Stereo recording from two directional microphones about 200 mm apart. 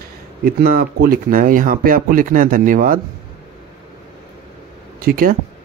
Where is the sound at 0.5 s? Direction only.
50° right (ahead or behind).